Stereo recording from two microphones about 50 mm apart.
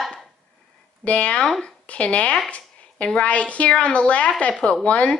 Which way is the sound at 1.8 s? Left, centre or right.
Left.